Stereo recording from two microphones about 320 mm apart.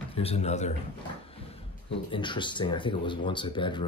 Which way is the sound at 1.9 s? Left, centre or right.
Centre.